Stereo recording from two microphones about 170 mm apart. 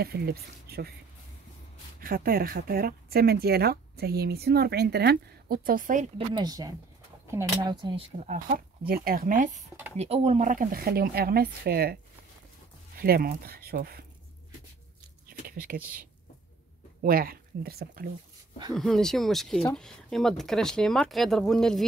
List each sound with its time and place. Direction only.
0.0 s speech: 65° right (ahead or behind)
2.0 s speech: 60° right (ahead or behind)
6.1 s speech: 25° right (ahead or behind)
7.7 s speech: 30° right (ahead or behind)
8.3 s speech: 55° right (ahead or behind)
9.9 s speech: 40° right (ahead or behind); by 14.0 s 60° right (ahead or behind)
15.2 s a sound: 60° right (ahead or behind)
17.0 s speech: 60° right (ahead or behind)
18.8 s speech: centre (ahead or behind)